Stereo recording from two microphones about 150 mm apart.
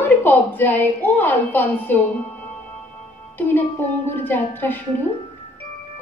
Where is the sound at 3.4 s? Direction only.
15° left (ahead or behind).